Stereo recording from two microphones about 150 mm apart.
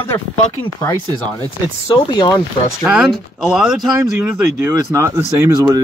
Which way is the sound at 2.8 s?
5° right (ahead or behind).